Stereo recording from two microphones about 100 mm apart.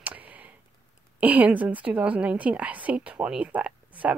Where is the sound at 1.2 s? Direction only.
15° right (ahead or behind).